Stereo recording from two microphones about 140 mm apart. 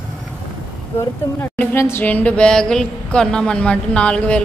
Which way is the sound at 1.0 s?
15° left (ahead or behind).